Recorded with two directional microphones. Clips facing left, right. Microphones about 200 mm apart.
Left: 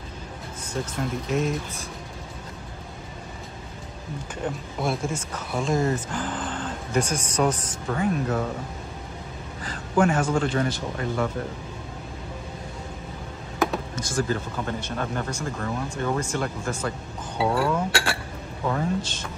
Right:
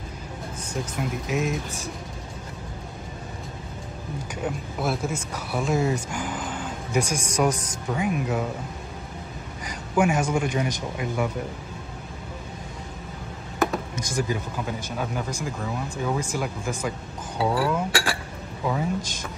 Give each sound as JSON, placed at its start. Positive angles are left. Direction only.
{"t": 0.9, "sound": "speech", "side_deg": -5}
{"t": 4.4, "sound": "speech", "side_deg": -5}
{"t": 9.7, "sound": "speech", "side_deg": -10}
{"t": 13.9, "sound": "speech", "side_deg": -15}